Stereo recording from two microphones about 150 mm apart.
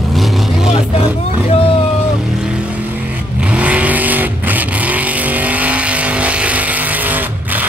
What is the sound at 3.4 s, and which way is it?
Vehicle, 10° right (ahead or behind).